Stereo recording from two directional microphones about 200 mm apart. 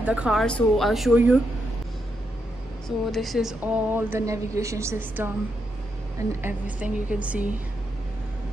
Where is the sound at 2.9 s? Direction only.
Centre (ahead or behind).